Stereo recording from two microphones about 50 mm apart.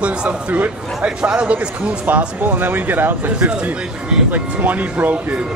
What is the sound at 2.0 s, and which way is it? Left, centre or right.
Speech, right.